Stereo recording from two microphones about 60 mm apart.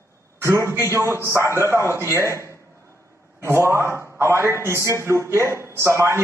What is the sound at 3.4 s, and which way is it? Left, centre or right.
A man's voice, right.